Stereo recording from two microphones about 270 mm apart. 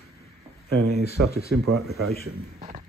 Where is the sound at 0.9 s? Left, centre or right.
Left.